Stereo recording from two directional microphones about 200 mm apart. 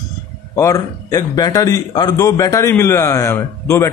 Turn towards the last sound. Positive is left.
turn(degrees=15)  # may be behind; listen again after turning